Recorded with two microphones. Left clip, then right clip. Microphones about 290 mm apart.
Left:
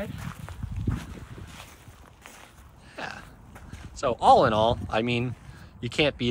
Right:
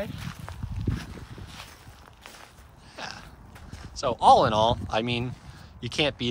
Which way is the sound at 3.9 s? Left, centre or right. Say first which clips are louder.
Even; centre.